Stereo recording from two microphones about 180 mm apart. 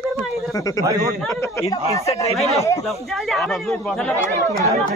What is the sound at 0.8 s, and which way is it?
Speech, 20° right (ahead or behind).